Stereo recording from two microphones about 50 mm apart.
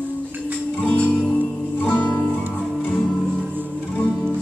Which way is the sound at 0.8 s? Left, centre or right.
Left.